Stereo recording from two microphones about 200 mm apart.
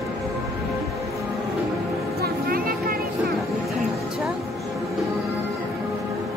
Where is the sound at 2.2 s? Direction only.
45° right (ahead or behind).